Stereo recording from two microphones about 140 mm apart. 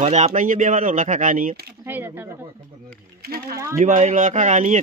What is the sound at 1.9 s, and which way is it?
Speech, 15° right (ahead or behind).